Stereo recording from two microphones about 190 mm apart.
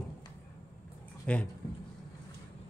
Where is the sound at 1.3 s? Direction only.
5° left (ahead or behind).